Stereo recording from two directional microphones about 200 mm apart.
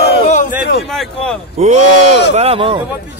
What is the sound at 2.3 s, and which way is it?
Speech, 30° right (ahead or behind).